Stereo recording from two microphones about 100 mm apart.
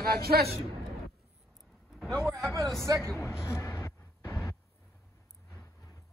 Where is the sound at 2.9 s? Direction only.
25° right (ahead or behind).